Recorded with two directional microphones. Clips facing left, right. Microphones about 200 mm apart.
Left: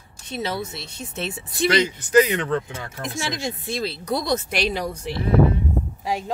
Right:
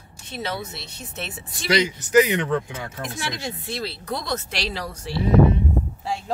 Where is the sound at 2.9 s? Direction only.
15° left (ahead or behind).